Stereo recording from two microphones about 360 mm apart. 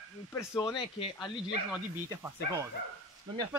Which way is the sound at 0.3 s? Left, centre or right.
Centre.